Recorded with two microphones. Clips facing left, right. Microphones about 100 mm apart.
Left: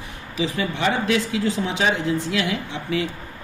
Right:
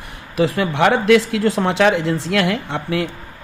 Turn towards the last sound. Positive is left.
turn(degrees=-60)  # may be behind; listen again after turning